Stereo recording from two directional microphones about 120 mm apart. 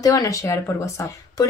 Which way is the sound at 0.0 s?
30° left (ahead or behind).